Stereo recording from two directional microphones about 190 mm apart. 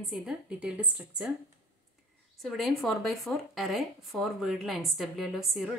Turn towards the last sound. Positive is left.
turn(degrees=0)  # may be behind; listen again after turning